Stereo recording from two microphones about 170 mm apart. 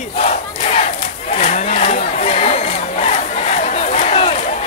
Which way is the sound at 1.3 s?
40° left (ahead or behind).